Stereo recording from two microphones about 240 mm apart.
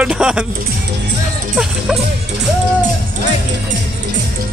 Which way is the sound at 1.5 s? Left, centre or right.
Centre.